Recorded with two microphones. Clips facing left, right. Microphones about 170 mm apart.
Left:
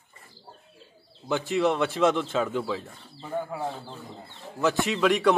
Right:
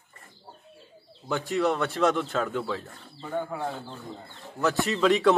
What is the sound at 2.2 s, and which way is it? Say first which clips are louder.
Speech: left 2 dB; 5° left (ahead or behind).